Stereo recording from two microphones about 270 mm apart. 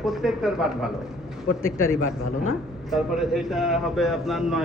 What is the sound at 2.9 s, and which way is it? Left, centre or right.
A man's voice, centre.